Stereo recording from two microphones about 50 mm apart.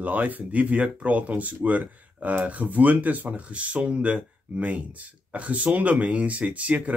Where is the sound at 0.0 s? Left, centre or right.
Right.